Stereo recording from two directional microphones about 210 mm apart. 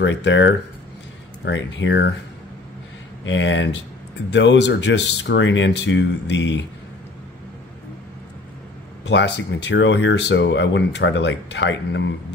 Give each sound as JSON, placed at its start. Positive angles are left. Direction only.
{"t": 0.0, "sound": "speech", "side_deg": 60}
{"t": 3.3, "sound": "speech", "side_deg": 60}
{"t": 9.0, "sound": "speech", "side_deg": 55}